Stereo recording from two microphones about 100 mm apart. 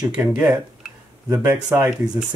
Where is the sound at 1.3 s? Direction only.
30° right (ahead or behind).